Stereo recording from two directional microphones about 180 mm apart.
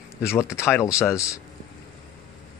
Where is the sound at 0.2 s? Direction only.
15° left (ahead or behind).